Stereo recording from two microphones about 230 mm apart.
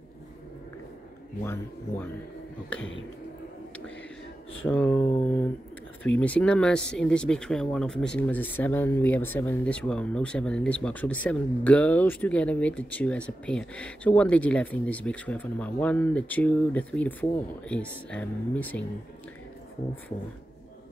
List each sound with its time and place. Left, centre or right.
1.4 s speech: centre
2.8 s speech: left
4.6 s speech: centre
6.0 s speech: centre